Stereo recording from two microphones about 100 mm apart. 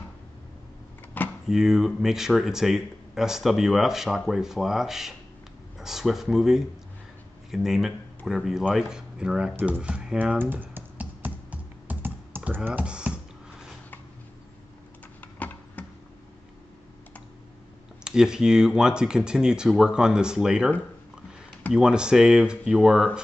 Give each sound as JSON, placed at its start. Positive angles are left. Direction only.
{"t": 1.1, "sound": "door", "side_deg": 15}
{"t": 1.5, "sound": "speech", "side_deg": -5}
{"t": 9.6, "sound": "computer keyboard", "side_deg": -10}
{"t": 15.1, "sound": "computer keyboard", "side_deg": 15}
{"t": 18.0, "sound": "speech", "side_deg": -5}
{"t": 21.7, "sound": "speech", "side_deg": -10}